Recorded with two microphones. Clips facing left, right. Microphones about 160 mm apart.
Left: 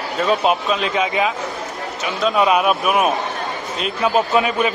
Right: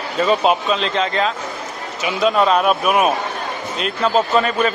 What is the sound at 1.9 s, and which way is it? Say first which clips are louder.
A man's voice: right 2 dB; centre (ahead or behind).